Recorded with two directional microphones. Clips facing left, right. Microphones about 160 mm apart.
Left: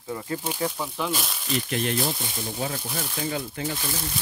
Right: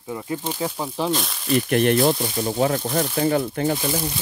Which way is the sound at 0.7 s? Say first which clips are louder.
Right 5 dB; 35° right (ahead or behind).